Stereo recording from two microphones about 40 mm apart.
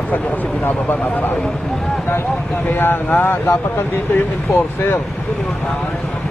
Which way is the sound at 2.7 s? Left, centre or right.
Left.